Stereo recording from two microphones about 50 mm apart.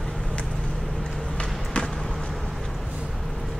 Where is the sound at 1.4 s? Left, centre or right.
Centre.